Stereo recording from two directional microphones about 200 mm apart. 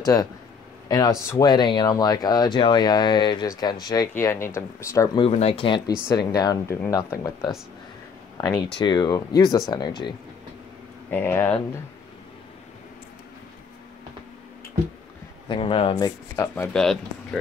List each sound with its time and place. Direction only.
0.0 s speech: 20° left (ahead or behind)
5.3 s speech: 30° left (ahead or behind)
11.1 s speech: 10° left (ahead or behind)
15.4 s speech: 25° left (ahead or behind)
16.6 s speech: centre (ahead or behind)